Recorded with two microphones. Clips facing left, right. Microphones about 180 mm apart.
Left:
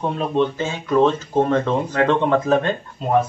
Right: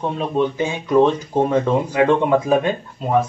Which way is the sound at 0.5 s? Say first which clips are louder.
Right 3 dB; 15° right (ahead or behind).